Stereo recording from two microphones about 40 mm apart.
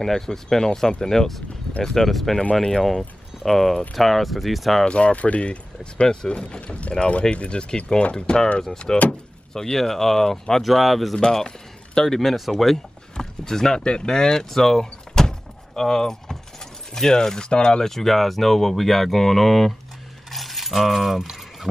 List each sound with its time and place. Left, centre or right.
0.0 s speech: centre
2.0 s speech: centre
3.0 s a sound: centre
3.9 s speech: centre
4.8 s speech: left
8.9 s speech: left
9.5 s speech: centre
11.1 s speech: centre
12.2 s speech: centre
17.8 s speech: centre
20.2 s a sound: centre